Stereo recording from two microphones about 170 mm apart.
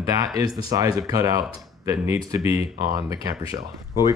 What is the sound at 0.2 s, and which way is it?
Speech, 20° right (ahead or behind).